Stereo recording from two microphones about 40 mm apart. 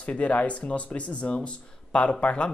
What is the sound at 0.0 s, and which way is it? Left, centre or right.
Speech, left.